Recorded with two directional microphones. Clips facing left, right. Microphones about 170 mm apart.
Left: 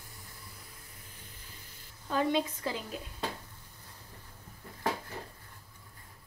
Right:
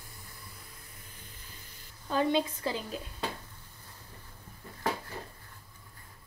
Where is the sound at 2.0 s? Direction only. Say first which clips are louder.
Right 1 dB; 30° right (ahead or behind).